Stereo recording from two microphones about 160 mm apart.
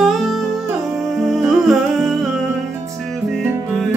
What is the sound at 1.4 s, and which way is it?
Humming, centre (ahead or behind).